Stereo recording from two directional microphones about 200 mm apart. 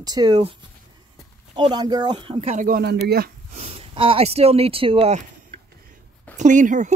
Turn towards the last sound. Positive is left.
turn(degrees=-40)  # may be behind; listen again after turning